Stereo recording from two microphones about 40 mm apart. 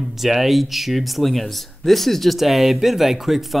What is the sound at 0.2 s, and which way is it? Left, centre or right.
Speech, centre.